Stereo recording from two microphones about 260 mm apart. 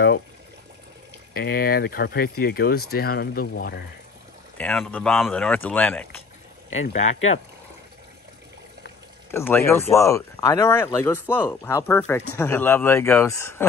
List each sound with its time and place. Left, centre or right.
1.3 s speech: left
4.6 s speech: centre
6.8 s speech: left
7.1 s speech: left
9.3 s speech: centre